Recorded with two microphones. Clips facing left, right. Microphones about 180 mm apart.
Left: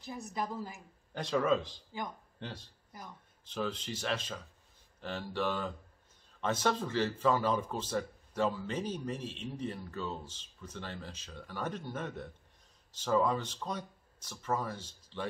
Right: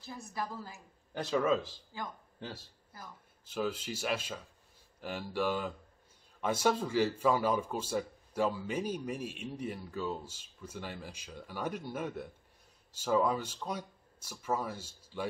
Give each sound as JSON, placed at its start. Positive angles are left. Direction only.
{"t": 0.0, "sound": "a woman's voice", "side_deg": 20}
{"t": 1.1, "sound": "a man's voice", "side_deg": -5}